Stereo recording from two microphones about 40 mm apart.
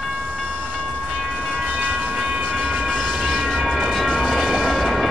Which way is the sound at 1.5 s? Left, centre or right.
Right.